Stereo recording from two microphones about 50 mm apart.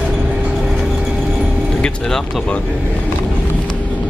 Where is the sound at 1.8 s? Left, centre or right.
Centre.